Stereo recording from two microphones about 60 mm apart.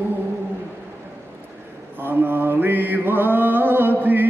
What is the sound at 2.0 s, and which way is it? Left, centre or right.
Mantra, right.